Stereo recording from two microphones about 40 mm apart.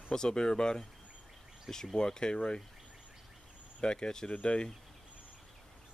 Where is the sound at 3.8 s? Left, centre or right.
Left.